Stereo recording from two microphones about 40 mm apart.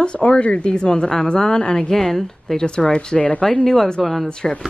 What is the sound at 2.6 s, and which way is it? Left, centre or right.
A woman's voice, left.